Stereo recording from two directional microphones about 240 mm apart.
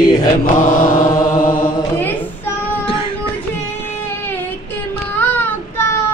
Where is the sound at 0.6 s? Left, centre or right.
Left.